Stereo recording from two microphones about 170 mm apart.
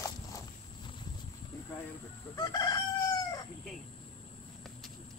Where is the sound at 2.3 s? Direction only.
20° left (ahead or behind).